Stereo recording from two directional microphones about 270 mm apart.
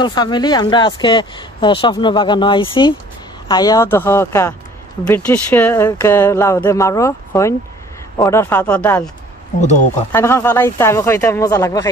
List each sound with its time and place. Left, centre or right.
0.0 s speech: centre
10.1 s speech: centre